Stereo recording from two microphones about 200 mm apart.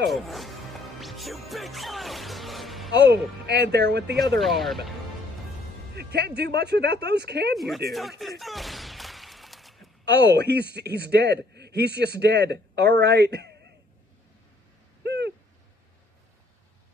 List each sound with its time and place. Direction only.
0.1 s music: centre (ahead or behind)
3.1 s a man's voice: 55° right (ahead or behind)
4.4 s speech: centre (ahead or behind)
5.9 s a man's voice: 55° right (ahead or behind)
7.5 s speech: centre (ahead or behind)
7.9 s a sound: centre (ahead or behind)
10.2 s a man's voice: 60° right (ahead or behind)
15.0 s a sound: 55° right (ahead or behind)